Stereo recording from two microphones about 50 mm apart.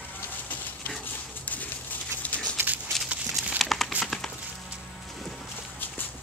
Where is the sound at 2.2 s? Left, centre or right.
Left.